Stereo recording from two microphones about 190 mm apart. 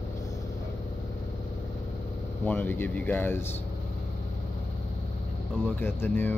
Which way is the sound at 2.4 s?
10° left (ahead or behind).